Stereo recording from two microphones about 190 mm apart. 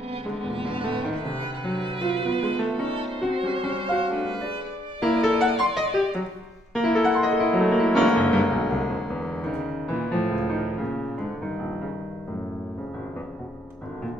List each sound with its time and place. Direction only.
0.4 s music: 30° right (ahead or behind)
2.0 s music: 30° right (ahead or behind)
3.4 s violin: centre (ahead or behind)
5.0 s music: centre (ahead or behind)